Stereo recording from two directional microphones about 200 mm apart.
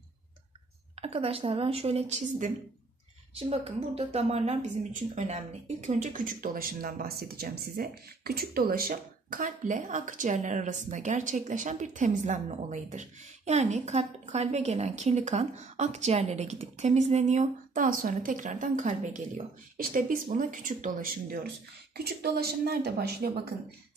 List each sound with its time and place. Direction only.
1.0 s a woman's voice: 30° right (ahead or behind); by 23.4 s 55° right (ahead or behind)